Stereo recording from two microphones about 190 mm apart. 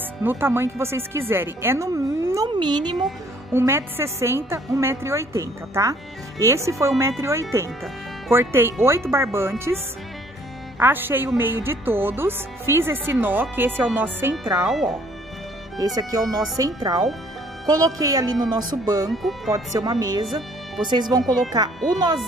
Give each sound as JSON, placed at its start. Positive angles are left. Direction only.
{"t": 0.2, "sound": "speech", "side_deg": -10}
{"t": 10.8, "sound": "speech", "side_deg": -10}
{"t": 15.8, "sound": "speech", "side_deg": -20}
{"t": 19.0, "sound": "speech", "side_deg": 0}
{"t": 19.5, "sound": "speech", "side_deg": -20}